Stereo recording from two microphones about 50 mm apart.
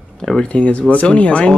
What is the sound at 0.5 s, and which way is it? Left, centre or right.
Speech, left.